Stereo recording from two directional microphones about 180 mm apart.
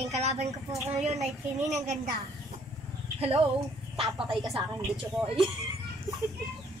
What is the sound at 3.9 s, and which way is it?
Speech, centre (ahead or behind).